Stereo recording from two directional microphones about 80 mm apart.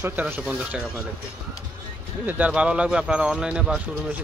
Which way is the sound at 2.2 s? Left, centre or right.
Centre.